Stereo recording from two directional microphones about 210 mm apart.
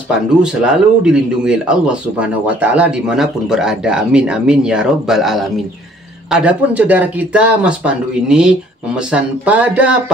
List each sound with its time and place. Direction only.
0.4 s speech: 5° right (ahead or behind)